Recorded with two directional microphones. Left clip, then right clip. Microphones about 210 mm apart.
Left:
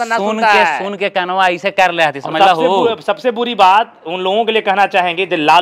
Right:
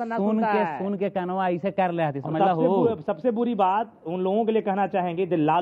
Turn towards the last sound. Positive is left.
turn(degrees=10)  # may be behind; listen again after turning